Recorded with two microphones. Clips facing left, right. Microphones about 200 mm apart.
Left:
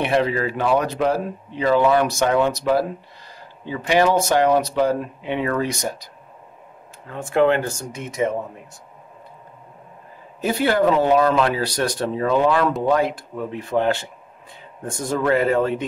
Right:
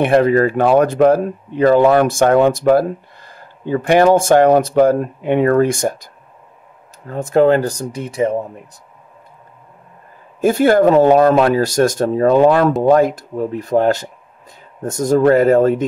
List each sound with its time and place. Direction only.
0.0 s speech: 50° right (ahead or behind)
7.1 s speech: 40° right (ahead or behind)
10.4 s speech: 45° right (ahead or behind)